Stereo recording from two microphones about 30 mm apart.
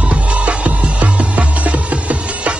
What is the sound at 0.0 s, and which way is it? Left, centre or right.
Music, right.